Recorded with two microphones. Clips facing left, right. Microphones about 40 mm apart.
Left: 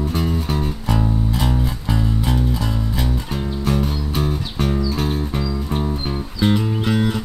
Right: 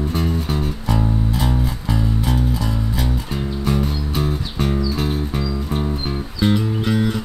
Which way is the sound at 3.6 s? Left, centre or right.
Centre.